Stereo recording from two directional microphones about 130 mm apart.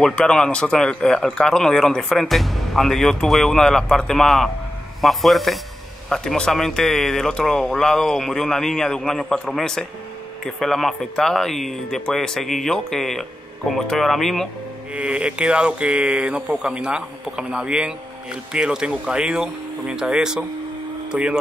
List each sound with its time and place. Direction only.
0.0 s speech: 5° left (ahead or behind)
15.0 s speech: 10° right (ahead or behind)